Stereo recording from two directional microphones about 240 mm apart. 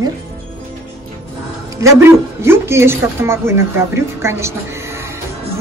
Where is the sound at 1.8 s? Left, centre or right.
Centre.